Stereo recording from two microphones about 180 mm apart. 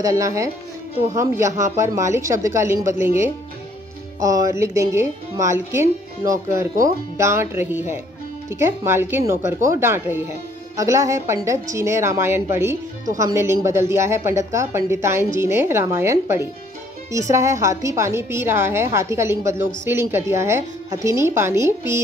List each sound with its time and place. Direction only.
0.0 s a woman's voice: 20° right (ahead or behind)